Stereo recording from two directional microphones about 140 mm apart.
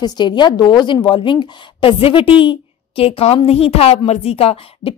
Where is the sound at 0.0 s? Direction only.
30° left (ahead or behind).